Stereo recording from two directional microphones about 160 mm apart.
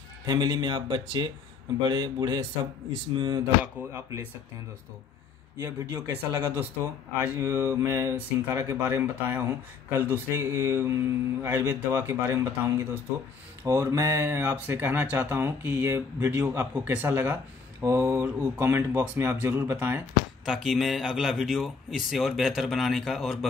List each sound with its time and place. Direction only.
0.2 s a man's voice: 25° right (ahead or behind)
3.6 s speech: 15° right (ahead or behind)
5.6 s speech: 20° right (ahead or behind)
20.4 s speech: centre (ahead or behind)